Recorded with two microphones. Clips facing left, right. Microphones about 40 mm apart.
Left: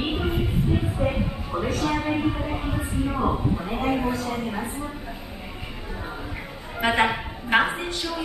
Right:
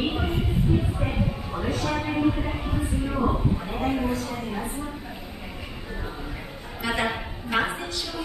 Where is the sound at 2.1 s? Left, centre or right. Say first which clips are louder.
Even; centre.